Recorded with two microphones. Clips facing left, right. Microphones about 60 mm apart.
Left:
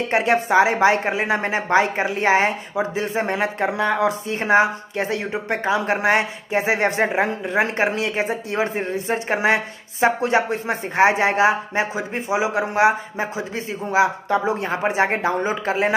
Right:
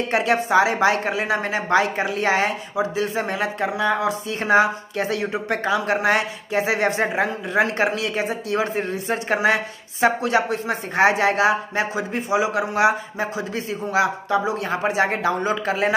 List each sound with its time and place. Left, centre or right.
0.1 s speech: left
4.4 s speech: left